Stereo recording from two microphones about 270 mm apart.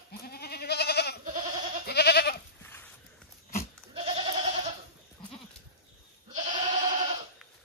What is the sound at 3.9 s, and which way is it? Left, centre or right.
Goat, right.